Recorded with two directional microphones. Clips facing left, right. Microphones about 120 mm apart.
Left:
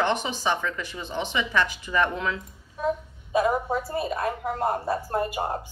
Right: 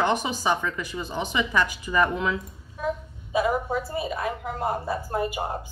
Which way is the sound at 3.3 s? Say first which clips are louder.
Left 1 dB; centre (ahead or behind).